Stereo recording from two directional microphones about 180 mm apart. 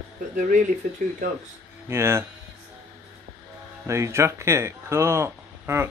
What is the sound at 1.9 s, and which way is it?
Speech, 15° right (ahead or behind).